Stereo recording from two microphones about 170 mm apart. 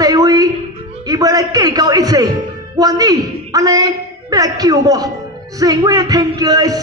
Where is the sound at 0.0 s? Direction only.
20° right (ahead or behind).